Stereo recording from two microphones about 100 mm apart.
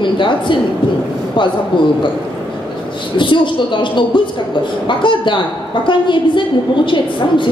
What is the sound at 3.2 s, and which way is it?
A woman's voice, 55° left (ahead or behind).